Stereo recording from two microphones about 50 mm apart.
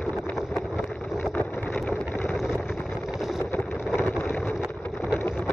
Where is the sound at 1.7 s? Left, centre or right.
Left.